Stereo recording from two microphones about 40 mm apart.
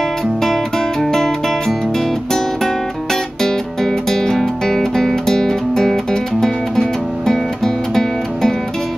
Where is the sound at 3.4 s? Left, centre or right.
Centre.